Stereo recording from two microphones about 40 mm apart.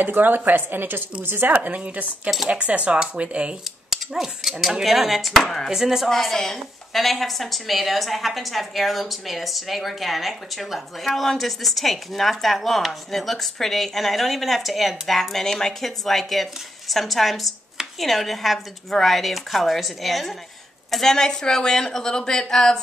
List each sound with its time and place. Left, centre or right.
0.0 s a woman's voice: right
1.5 s speech: right
3.0 s speech: right
3.9 s a sound: centre
4.4 s a woman's voice: centre
5.3 s a woman's voice: centre
5.7 s speech: centre
6.2 s a woman's voice: centre
20.9 s a woman's voice: centre